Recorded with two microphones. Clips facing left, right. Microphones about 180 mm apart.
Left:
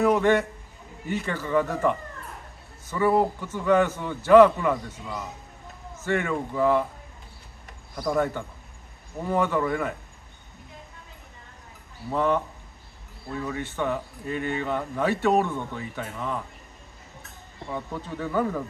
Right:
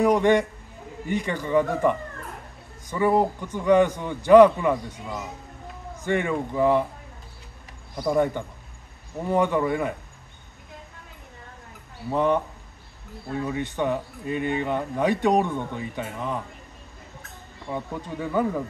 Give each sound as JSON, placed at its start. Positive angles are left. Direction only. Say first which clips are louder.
{"t": 0.0, "sound": "a man's voice", "louder": "right 2 dB", "side_deg": -15}
{"t": 7.9, "sound": "a man's voice", "louder": "right 3 dB", "side_deg": -20}
{"t": 12.1, "sound": "a man's voice", "louder": "right 2 dB", "side_deg": -15}
{"t": 13.4, "sound": "a man's voice", "louder": "right 3 dB", "side_deg": -20}
{"t": 17.6, "sound": "a man's voice", "louder": "right 2 dB", "side_deg": -15}